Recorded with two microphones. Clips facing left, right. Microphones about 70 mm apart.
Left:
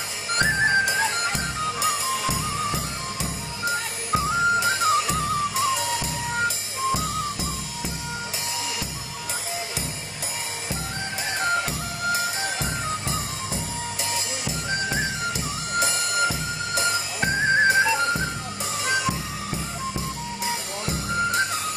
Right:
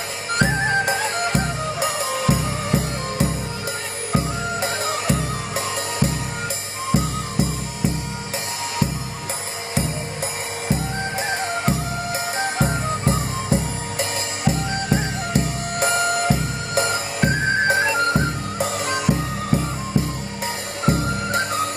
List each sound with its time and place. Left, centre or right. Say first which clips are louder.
0.8 s music: right 2 dB; right
11.6 s music: right 4 dB; right
20.8 s music: right 5 dB; right